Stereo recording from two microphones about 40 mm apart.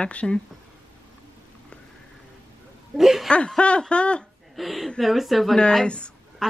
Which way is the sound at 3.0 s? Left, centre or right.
Centre.